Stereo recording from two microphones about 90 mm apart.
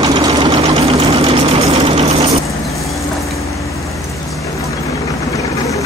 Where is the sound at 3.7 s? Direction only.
35° left (ahead or behind).